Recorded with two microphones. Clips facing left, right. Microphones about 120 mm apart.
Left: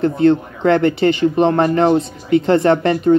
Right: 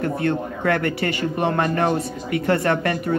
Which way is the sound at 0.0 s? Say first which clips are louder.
Left 9 dB; 25° left (ahead or behind).